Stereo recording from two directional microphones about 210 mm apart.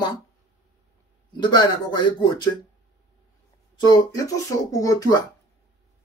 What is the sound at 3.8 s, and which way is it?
Speech, 20° left (ahead or behind).